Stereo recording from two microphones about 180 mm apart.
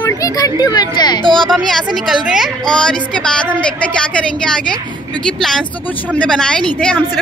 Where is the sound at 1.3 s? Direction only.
Centre (ahead or behind).